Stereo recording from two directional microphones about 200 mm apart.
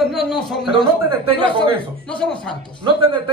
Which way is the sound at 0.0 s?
Centre (ahead or behind).